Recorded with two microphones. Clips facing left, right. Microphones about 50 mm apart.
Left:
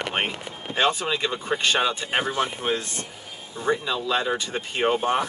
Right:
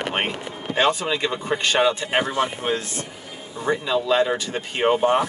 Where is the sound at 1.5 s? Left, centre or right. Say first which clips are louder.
Right 3 dB; centre.